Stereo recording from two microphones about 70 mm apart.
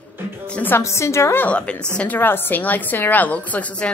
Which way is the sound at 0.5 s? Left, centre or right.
Left.